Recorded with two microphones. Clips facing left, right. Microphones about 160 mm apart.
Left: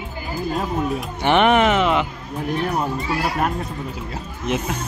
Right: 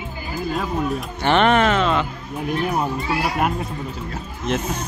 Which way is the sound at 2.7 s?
5° right (ahead or behind).